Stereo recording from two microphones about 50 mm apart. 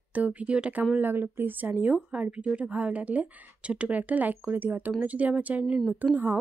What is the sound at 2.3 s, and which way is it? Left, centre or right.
Speech, right.